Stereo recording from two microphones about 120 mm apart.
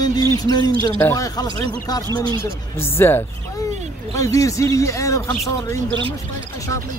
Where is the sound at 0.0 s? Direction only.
35° left (ahead or behind).